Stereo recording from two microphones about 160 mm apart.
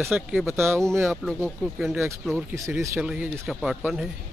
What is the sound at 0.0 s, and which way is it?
Speech, centre (ahead or behind).